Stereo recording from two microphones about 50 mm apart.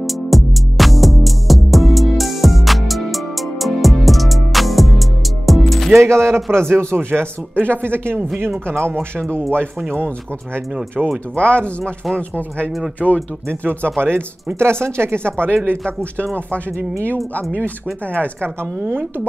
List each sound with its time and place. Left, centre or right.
0.0 s music: centre
5.9 s speech: right
9.8 s speech: right
11.0 s speech: centre
11.3 s speech: left
13.0 s speech: centre
13.5 s speech: right
18.8 s speech: right